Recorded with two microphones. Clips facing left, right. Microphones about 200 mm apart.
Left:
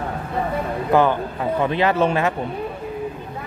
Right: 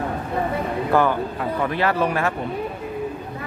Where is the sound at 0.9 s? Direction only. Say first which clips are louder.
Left 2 dB; 20° left (ahead or behind).